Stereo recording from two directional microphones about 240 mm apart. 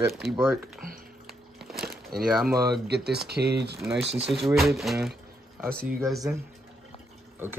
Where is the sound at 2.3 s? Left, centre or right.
Centre.